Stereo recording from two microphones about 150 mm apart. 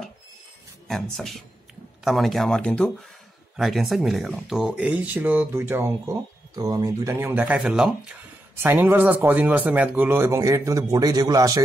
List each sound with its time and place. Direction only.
1.1 s speech: centre (ahead or behind)
7.5 s speech: 5° right (ahead or behind)
8.6 s speech: 15° right (ahead or behind)